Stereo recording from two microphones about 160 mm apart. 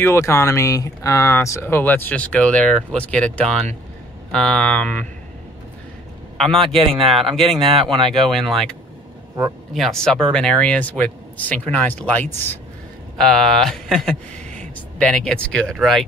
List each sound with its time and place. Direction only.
0.0 s speech: 15° left (ahead or behind)
6.3 s a man's voice: centre (ahead or behind)
6.7 s speech: 35° right (ahead or behind)
8.3 s speech: centre (ahead or behind)
9.8 s speech: 5° left (ahead or behind)